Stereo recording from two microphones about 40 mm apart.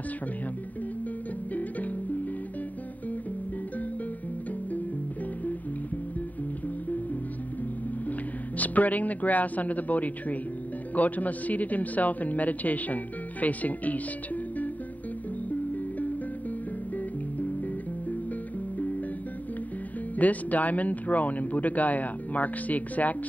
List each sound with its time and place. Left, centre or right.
1.5 s music: left
8.5 s a man's voice: left
20.2 s a man's voice: left